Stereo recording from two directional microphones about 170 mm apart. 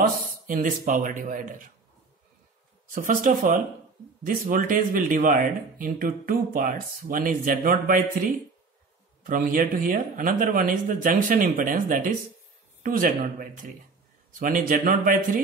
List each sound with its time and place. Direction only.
0.5 s speech: 50° right (ahead or behind)
2.9 s speech: 55° right (ahead or behind)